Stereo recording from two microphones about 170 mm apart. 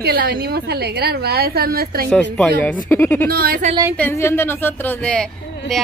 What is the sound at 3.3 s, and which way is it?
Speech, 60° right (ahead or behind).